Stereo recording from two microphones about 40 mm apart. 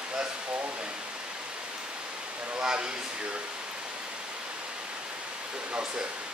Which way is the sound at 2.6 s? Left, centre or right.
Centre.